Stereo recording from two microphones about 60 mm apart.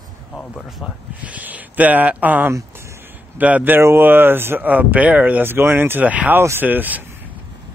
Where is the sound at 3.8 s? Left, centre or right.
Right.